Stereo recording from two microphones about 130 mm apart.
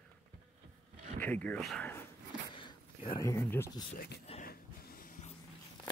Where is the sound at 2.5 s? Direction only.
40° left (ahead or behind).